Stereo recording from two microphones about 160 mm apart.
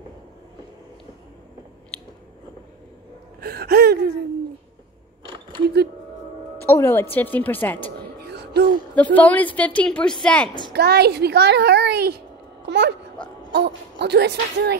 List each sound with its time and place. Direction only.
3.3 s gasp: 80° right
5.3 s a sound: 30° right (ahead or behind)
6.6 s speech: 15° left (ahead or behind)
8.2 s music: 90° right
8.9 s speech: 10° left (ahead or behind)
10.7 s a child's voice: 90° right
12.6 s babbling: 90° right
13.5 s a child's voice: 90° right